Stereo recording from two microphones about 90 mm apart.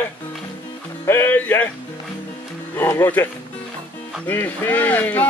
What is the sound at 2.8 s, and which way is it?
Speech, 25° left (ahead or behind).